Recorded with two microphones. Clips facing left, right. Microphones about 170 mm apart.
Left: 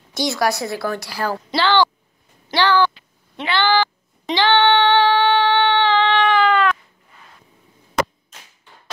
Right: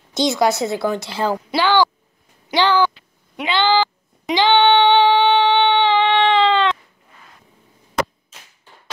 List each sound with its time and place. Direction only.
0.1 s a woman's voice: 20° right (ahead or behind)
3.3 s female singing: 20° right (ahead or behind)